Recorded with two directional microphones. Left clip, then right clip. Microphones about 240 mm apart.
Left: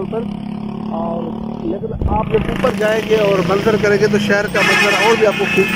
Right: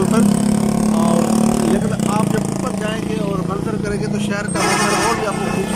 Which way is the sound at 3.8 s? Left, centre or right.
Left.